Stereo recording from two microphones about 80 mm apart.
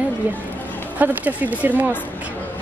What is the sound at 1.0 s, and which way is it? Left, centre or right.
Speech, right.